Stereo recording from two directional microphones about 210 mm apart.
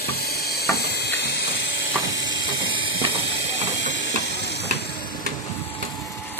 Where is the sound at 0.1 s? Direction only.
50° left (ahead or behind).